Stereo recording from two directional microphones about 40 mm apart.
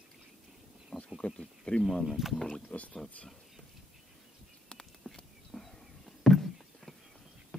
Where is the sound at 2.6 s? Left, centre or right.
Left.